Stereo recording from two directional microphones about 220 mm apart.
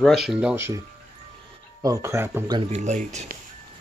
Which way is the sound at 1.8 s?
15° right (ahead or behind).